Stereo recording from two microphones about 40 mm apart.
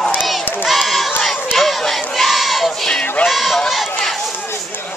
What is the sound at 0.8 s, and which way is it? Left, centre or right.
Battle cry, centre.